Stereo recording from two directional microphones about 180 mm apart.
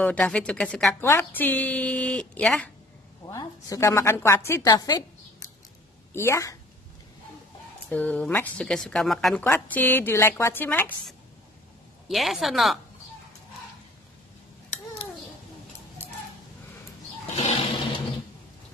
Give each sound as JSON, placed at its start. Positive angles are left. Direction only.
{"t": 0.0, "sound": "speech", "side_deg": 5}
{"t": 3.3, "sound": "a woman's voice", "side_deg": 20}
{"t": 7.9, "sound": "a woman's voice", "side_deg": 10}
{"t": 12.1, "sound": "speech", "side_deg": 0}
{"t": 17.4, "sound": "a sound", "side_deg": 30}